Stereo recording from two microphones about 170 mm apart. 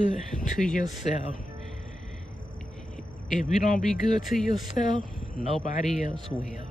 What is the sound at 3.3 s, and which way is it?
Speech, 50° left (ahead or behind).